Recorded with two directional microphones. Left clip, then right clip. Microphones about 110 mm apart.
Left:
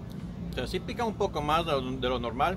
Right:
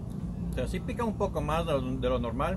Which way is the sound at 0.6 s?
20° left (ahead or behind).